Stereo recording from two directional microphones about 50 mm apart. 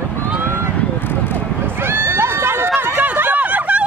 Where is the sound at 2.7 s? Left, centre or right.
Right.